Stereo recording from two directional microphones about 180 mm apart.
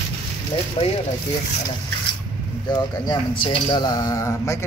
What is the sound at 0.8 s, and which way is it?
Speech, 30° left (ahead or behind).